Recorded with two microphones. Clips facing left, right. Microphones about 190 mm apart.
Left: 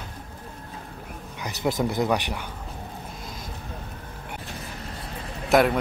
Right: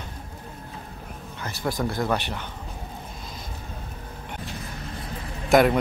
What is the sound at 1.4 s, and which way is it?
Speech, 20° left (ahead or behind).